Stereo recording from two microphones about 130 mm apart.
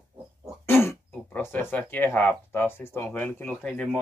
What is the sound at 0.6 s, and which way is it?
Speech, 20° left (ahead or behind).